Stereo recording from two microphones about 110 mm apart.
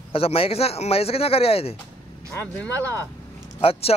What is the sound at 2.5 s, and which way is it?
Speech, 15° left (ahead or behind).